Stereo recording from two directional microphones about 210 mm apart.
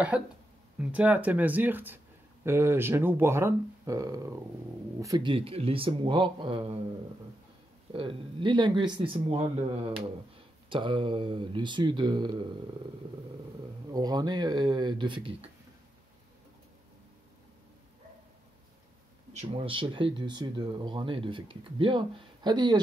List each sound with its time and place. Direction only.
0.1 s speech: 5° right (ahead or behind); by 6.8 s 25° right (ahead or behind)
7.9 s speech: 25° right (ahead or behind)
10.7 s speech: 25° right (ahead or behind)
13.9 s speech: 20° right (ahead or behind)
19.3 s speech: 25° right (ahead or behind)